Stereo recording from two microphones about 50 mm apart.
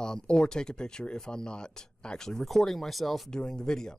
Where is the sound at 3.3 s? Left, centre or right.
Centre.